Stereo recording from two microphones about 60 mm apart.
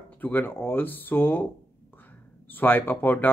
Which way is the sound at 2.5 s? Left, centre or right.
Left.